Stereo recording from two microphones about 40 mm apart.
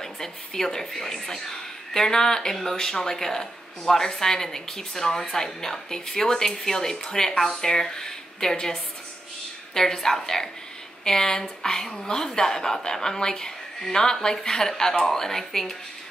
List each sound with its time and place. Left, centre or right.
0.0 s speech: centre
9.8 s speech: centre